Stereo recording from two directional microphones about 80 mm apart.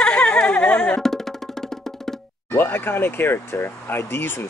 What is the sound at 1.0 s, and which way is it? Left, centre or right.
Music, centre.